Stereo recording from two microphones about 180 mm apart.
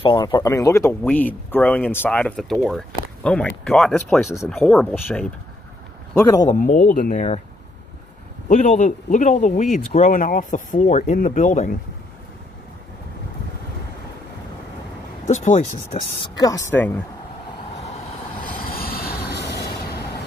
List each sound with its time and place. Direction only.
0.0 s speech: 25° left (ahead or behind); by 5.3 s 5° left (ahead or behind)
6.1 s speech: 20° left (ahead or behind)
6.5 s speech: 45° left (ahead or behind)
8.5 s speech: 40° left (ahead or behind)
15.2 s speech: 40° left (ahead or behind)
16.2 s speech: 20° left (ahead or behind)
18.4 s train: 55° left (ahead or behind)